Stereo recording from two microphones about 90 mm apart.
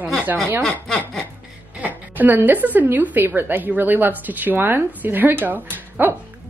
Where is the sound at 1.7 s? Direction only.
20° right (ahead or behind).